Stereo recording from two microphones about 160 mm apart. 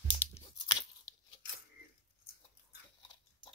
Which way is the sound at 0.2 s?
35° left (ahead or behind).